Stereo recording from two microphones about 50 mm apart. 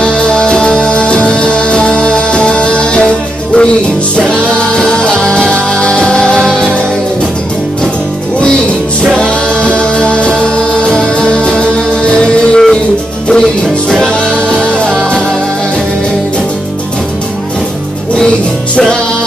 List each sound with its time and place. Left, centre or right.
0.0 s music: left
9.2 s music: left